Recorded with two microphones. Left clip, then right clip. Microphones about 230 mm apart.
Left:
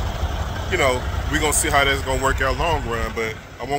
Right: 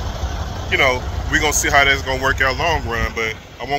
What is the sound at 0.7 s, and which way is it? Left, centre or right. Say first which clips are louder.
Speech: right 4 dB; centre.